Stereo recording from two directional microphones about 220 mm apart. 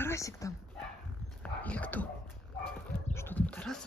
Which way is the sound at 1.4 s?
5° left (ahead or behind).